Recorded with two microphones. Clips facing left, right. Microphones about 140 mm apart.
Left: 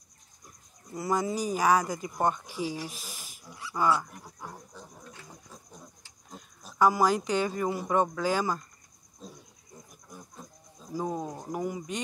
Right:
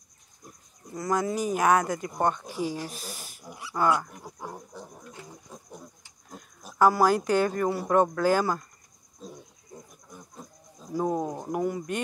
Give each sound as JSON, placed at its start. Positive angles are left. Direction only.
{"t": 0.9, "sound": "speech", "side_deg": 5}
{"t": 3.0, "sound": "a sound", "side_deg": 0}
{"t": 4.2, "sound": "insect", "side_deg": -25}
{"t": 5.1, "sound": "a sound", "side_deg": -15}
{"t": 6.3, "sound": "a sound", "side_deg": 0}
{"t": 7.0, "sound": "a man's voice", "side_deg": 0}
{"t": 9.2, "sound": "cricket", "side_deg": 0}
{"t": 11.0, "sound": "speech", "side_deg": -15}
{"t": 11.6, "sound": "speech", "side_deg": 5}